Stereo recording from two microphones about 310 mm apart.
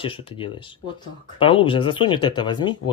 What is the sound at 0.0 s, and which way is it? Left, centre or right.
Speech, centre.